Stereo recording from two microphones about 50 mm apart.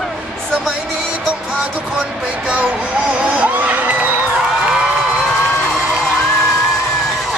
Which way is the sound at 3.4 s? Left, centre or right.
Right.